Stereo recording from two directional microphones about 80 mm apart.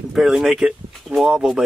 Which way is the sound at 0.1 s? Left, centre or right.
Centre.